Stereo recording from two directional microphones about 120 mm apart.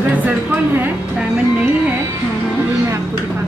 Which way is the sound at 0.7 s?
15° right (ahead or behind).